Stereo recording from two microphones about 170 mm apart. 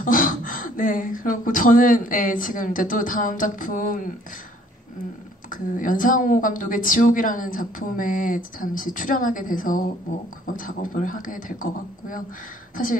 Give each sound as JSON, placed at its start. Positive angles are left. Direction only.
{"t": 0.0, "sound": "a woman's voice", "side_deg": 55}
{"t": 5.5, "sound": "a woman's voice", "side_deg": 50}